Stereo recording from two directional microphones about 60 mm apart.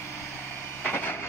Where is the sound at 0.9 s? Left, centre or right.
Left.